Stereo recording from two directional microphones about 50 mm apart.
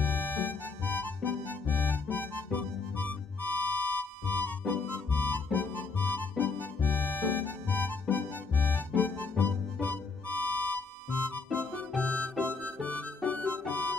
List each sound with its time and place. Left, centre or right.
0.0 s music: left
12.0 s music: left